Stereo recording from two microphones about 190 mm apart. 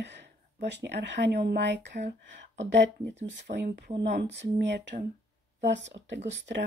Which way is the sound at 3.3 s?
65° right (ahead or behind).